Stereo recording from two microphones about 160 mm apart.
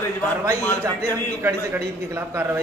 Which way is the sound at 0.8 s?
15° right (ahead or behind).